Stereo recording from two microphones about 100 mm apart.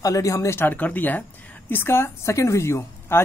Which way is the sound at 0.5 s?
20° left (ahead or behind).